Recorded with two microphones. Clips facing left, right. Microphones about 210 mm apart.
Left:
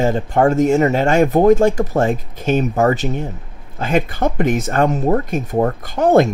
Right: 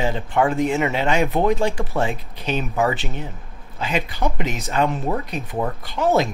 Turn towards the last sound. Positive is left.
turn(degrees=50)  # may be behind; listen again after turning